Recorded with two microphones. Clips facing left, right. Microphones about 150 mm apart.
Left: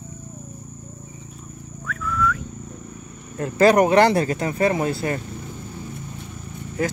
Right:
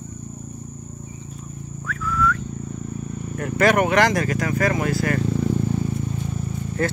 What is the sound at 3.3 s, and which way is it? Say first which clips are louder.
Speech: left 3 dB; 30° left (ahead or behind).